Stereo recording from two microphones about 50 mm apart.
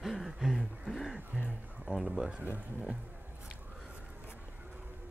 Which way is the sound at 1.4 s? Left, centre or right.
Centre.